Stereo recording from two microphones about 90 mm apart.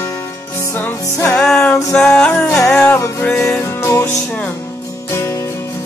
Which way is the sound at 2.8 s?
25° left (ahead or behind).